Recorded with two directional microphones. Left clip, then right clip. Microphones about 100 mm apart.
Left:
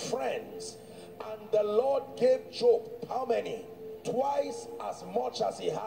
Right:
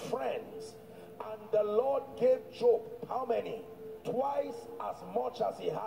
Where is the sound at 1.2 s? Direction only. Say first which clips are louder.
Left 2 dB; 25° left (ahead or behind).